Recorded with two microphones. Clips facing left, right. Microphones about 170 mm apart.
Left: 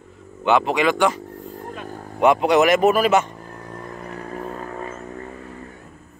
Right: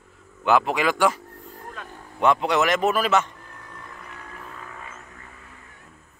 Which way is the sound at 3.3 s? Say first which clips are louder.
Left 8 dB; 45° left (ahead or behind).